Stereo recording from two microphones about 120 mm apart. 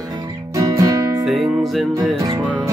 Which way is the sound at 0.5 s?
25° right (ahead or behind).